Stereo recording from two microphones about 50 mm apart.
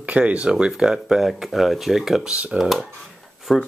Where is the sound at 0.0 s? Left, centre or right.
Right.